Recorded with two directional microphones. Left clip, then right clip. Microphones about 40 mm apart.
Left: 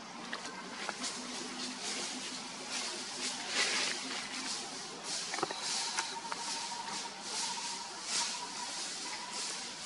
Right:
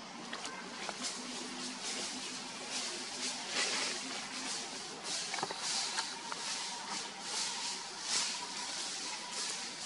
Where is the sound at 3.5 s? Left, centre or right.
Centre.